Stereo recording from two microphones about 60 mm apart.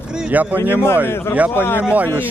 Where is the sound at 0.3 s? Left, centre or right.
Right.